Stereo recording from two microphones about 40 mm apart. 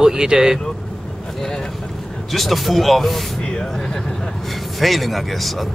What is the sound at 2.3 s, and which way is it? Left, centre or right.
Speech, centre.